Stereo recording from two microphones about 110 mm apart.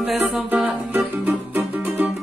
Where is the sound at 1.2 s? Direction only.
15° right (ahead or behind).